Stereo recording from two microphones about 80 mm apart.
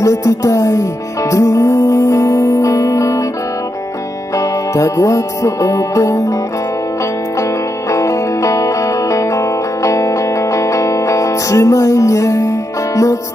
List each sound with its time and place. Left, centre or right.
0.0 s music: left
4.7 s music: left
7.9 s music: left